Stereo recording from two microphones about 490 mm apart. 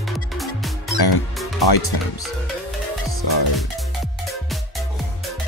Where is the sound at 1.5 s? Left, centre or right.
Left.